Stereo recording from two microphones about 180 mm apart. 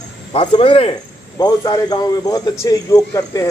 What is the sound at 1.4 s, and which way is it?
A man's voice, 20° left (ahead or behind).